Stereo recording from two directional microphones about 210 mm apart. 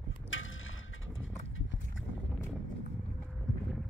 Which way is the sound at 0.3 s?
70° left (ahead or behind).